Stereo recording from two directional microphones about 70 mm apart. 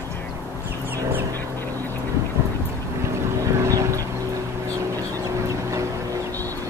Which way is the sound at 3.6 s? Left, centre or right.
Right.